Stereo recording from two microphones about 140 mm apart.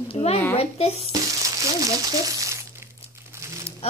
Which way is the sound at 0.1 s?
45° left (ahead or behind).